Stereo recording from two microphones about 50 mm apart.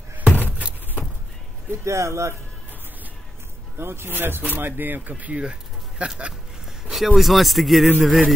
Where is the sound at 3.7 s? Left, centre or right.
Right.